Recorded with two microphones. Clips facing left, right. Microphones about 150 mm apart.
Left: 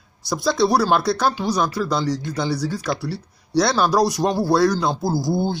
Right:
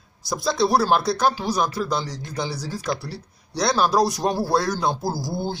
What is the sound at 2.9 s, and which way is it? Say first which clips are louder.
Speech: left 6 dB; 70° left (ahead or behind).